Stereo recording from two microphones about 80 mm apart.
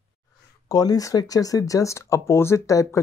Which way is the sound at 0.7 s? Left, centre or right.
Left.